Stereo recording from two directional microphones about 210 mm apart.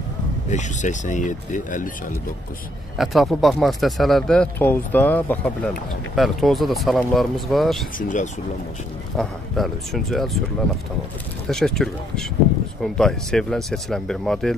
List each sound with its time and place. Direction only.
0.5 s speech: 35° left (ahead or behind)
3.0 s speech: centre (ahead or behind)
8.0 s speech: 40° left (ahead or behind)
9.1 s speech: centre (ahead or behind)
11.4 s speech: centre (ahead or behind)